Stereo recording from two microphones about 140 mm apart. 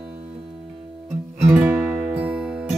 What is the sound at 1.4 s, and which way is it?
Music, 10° right (ahead or behind).